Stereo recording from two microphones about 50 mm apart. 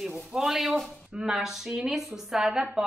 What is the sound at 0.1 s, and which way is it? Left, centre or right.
A man's voice, centre.